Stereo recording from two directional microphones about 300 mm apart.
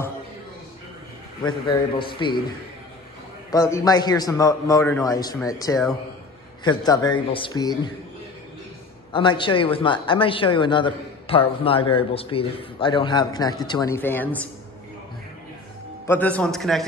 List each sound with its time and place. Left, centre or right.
2.0 s speech: centre
3.5 s speech: centre
9.1 s speech: centre
16.1 s a man's voice: centre